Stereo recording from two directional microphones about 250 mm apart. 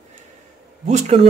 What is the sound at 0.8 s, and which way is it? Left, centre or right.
Speech, right.